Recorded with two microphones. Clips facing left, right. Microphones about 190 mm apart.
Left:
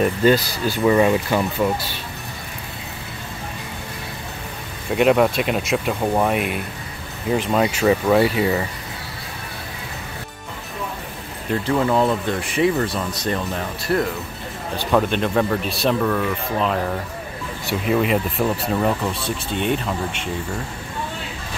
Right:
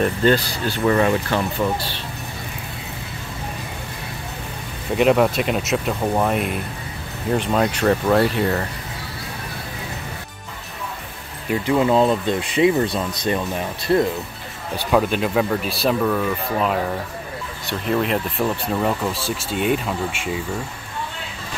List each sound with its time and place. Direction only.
0.0 s speech: 10° left (ahead or behind)
4.9 s speech: centre (ahead or behind)
11.5 s speech: 15° right (ahead or behind)
14.9 s speech: 5° right (ahead or behind)